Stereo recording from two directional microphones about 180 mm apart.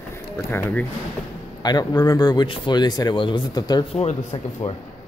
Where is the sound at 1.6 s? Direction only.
20° left (ahead or behind).